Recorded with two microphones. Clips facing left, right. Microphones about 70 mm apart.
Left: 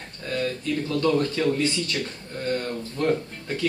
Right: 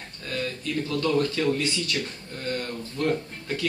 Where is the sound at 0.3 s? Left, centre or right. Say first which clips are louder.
Left 3 dB; left.